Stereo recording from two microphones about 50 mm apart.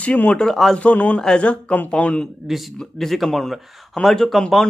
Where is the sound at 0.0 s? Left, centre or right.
Left.